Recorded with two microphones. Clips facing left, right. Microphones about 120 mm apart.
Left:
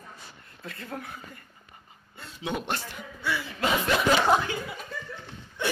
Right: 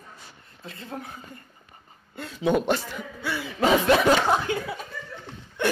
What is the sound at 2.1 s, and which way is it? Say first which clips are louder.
Speech: right 9 dB; 65° right (ahead or behind).